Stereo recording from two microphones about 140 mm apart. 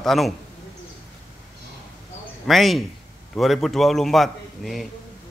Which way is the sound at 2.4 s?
Centre (ahead or behind).